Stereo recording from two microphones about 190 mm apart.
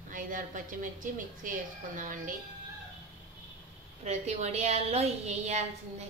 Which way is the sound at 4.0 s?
35° right (ahead or behind).